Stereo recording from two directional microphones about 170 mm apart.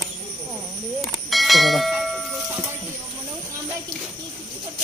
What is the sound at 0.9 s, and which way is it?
Bell, centre (ahead or behind).